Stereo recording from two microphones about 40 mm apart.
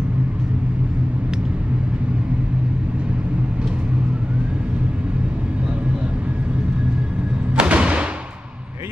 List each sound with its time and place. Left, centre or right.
7.5 s music: right